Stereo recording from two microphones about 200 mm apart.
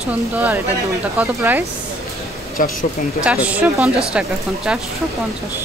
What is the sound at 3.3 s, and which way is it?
A woman's voice, 5° right (ahead or behind).